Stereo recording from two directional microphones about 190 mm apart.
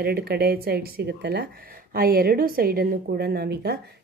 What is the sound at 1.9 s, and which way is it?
A woman's voice, 50° right (ahead or behind).